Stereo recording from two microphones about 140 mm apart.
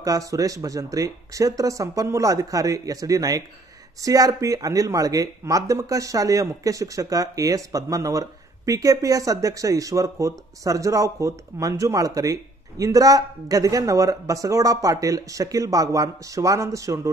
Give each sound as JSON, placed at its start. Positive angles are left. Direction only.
{"t": 0.0, "sound": "speech", "side_deg": -25}